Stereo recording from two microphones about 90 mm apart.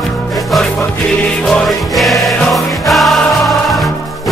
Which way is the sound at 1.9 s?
Centre (ahead or behind).